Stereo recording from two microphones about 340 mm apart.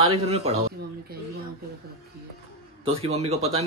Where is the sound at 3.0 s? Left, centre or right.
Centre.